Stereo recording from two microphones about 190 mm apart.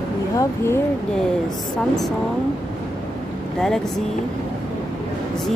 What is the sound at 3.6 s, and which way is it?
Speech, centre (ahead or behind).